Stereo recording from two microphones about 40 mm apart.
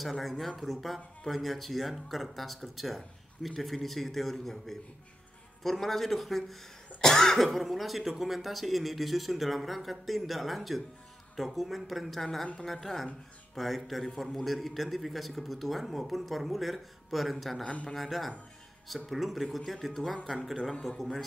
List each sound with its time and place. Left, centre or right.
0.0 s a man's voice: centre
7.0 s cough: centre
7.4 s a man's voice: centre